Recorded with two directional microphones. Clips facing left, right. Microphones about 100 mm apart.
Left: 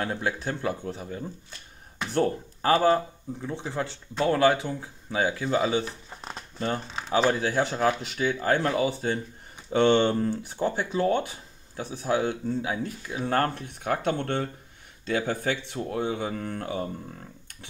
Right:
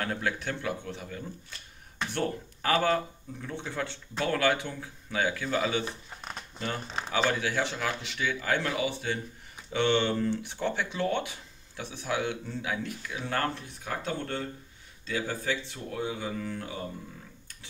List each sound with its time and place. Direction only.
0.0 s speech: 25° left (ahead or behind); by 10.1 s 50° left (ahead or behind)
10.1 s speech: 40° left (ahead or behind)
13.3 s speech: 50° left (ahead or behind)